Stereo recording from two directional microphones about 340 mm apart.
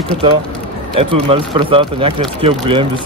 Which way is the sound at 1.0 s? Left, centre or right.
Centre.